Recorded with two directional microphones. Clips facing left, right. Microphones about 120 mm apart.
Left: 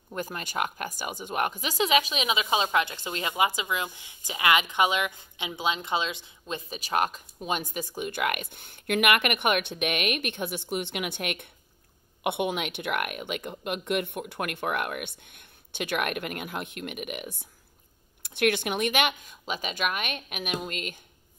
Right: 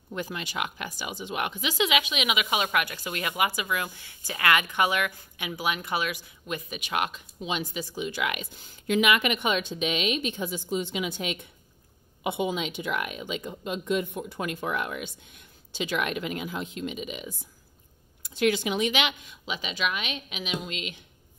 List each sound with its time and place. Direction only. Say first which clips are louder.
0.1 s speech: even; 45° left (ahead or behind)